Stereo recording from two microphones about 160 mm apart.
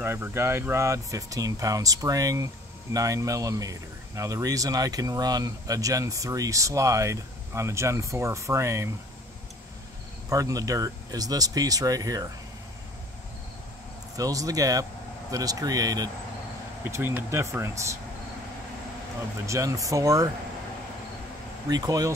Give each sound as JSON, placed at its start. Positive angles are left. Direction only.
{"t": 0.0, "sound": "speech", "side_deg": -15}
{"t": 10.3, "sound": "speech", "side_deg": -20}
{"t": 14.1, "sound": "speech", "side_deg": -20}
{"t": 19.4, "sound": "speech", "side_deg": -20}
{"t": 21.6, "sound": "speech", "side_deg": -25}